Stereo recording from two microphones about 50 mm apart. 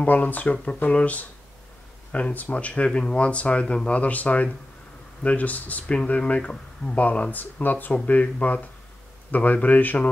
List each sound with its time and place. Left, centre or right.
0.0 s speech: left